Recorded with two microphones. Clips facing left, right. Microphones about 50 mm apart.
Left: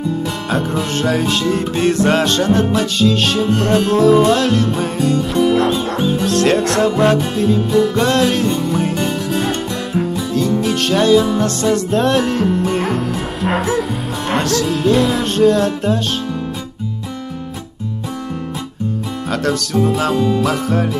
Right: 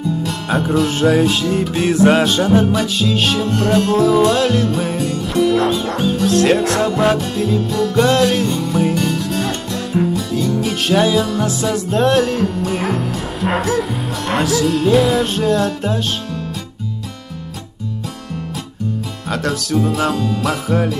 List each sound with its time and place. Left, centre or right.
0.5 s speech: centre
5.4 s speech: centre
8.5 s music: left
9.9 s music: centre
11.3 s speech: centre
12.7 s music: centre
13.7 s speech: centre
19.3 s speech: centre
20.2 s music: left
20.4 s speech: centre